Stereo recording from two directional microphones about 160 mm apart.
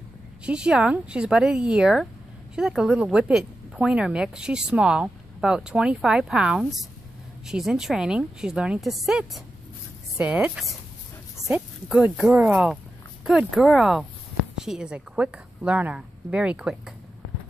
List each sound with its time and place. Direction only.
0.5 s a woman's voice: 5° right (ahead or behind)
11.3 s a sound: 20° right (ahead or behind)
11.9 s a woman's voice: 5° right (ahead or behind)